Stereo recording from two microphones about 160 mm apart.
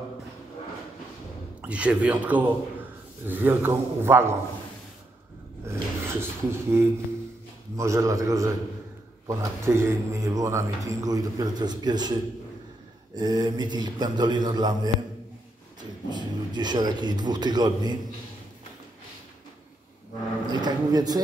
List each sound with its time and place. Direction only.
1.6 s a man's voice: 10° right (ahead or behind)
5.7 s speech: 15° right (ahead or behind)
16.1 s speech: 25° right (ahead or behind)
20.5 s speech: 25° right (ahead or behind)